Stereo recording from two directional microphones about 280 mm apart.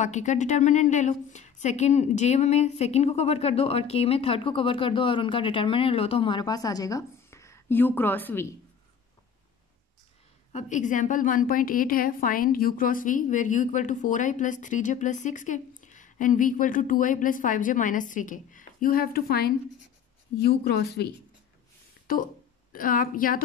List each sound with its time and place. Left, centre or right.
0.0 s a woman's voice: left; by 8.5 s centre
10.5 s a woman's voice: left